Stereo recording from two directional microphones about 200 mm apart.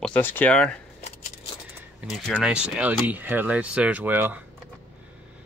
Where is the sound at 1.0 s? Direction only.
30° left (ahead or behind).